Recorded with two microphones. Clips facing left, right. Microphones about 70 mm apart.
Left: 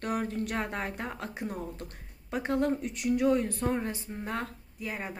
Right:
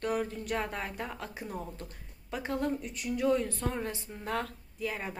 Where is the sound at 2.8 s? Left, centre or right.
Left.